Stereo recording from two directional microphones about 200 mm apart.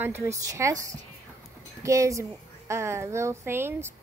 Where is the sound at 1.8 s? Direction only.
15° right (ahead or behind).